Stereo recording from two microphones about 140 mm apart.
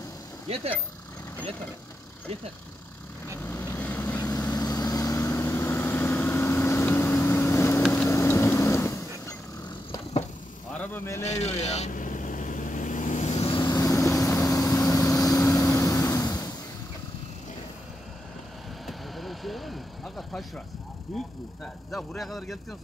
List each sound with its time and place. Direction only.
3.4 s vehicle: 15° left (ahead or behind)
4.2 s vehicle: 25° left (ahead or behind)
10.7 s a sound: 10° left (ahead or behind)
11.2 s vehicle: 50° left (ahead or behind)
13.5 s vehicle: 30° left (ahead or behind)
18.9 s vehicle: centre (ahead or behind)
21.9 s a man's voice: centre (ahead or behind)